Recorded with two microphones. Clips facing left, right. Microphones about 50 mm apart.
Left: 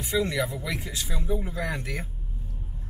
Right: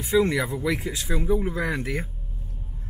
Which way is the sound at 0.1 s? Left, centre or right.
Centre.